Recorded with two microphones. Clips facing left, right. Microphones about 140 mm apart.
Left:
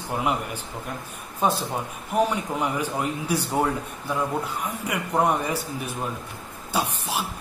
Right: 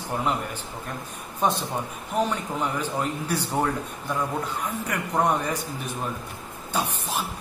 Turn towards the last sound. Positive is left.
turn(degrees=10)  # may be behind; listen again after turning